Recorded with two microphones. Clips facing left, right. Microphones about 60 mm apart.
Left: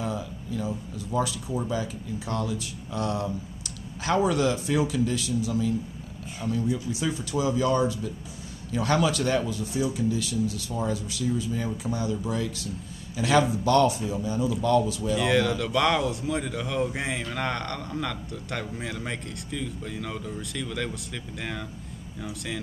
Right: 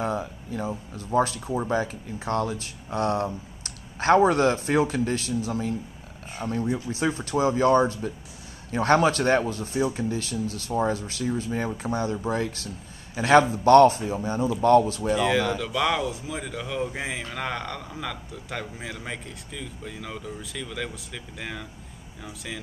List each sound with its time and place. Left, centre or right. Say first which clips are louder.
0.0 s speech: right 3 dB; right
15.1 s speech: left 1 dB; centre